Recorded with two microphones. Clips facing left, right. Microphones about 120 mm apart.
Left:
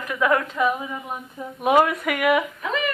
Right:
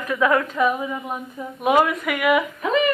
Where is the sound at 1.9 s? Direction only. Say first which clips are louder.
Right 1 dB; 40° left (ahead or behind).